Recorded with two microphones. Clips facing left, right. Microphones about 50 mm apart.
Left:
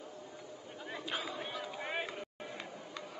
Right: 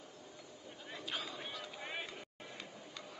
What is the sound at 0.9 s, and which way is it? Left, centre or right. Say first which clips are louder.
Chatter: left 4 dB; centre.